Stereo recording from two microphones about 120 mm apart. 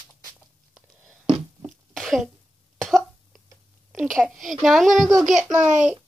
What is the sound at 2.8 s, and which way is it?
Cough, centre (ahead or behind).